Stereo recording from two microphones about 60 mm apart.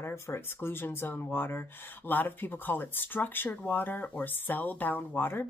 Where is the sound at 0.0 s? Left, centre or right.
Left.